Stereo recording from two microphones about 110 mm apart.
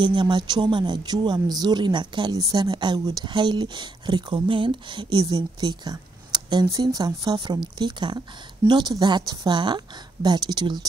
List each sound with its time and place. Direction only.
0.0 s a woman's voice: 45° right (ahead or behind)